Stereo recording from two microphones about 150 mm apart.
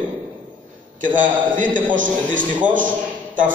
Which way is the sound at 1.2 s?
60° right (ahead or behind).